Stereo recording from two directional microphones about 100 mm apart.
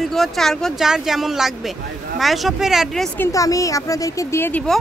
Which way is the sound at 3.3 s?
35° left (ahead or behind).